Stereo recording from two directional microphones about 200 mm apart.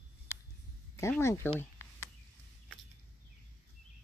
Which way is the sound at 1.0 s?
15° left (ahead or behind).